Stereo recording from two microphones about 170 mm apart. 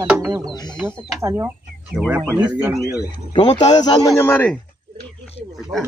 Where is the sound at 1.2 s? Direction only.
15° right (ahead or behind).